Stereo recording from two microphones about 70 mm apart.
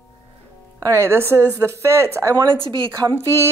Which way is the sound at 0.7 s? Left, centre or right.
Right.